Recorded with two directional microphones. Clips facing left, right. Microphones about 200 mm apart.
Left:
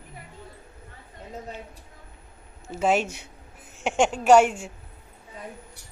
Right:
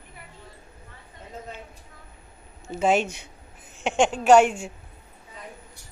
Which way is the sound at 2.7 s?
5° left (ahead or behind).